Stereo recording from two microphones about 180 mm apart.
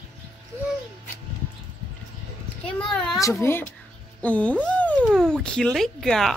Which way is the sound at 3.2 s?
15° left (ahead or behind).